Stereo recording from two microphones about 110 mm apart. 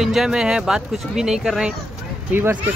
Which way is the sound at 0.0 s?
5° right (ahead or behind).